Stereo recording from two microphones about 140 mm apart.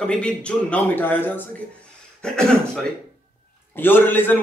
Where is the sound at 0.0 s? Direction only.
5° left (ahead or behind).